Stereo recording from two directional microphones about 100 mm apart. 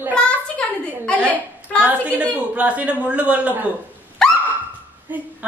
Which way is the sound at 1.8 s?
15° right (ahead or behind).